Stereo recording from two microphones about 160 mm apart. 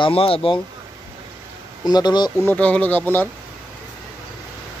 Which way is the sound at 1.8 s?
25° left (ahead or behind).